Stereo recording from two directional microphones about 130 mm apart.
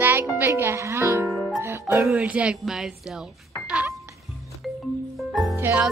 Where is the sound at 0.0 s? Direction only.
15° right (ahead or behind).